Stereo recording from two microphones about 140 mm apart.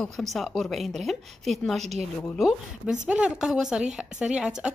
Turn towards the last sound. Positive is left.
turn(degrees=-5)  # may be behind; listen again after turning